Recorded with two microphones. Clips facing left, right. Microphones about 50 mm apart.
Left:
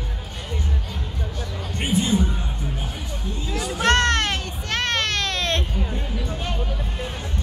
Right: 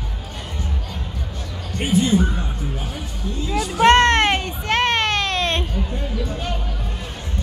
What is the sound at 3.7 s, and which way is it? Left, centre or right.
Baby cry, right.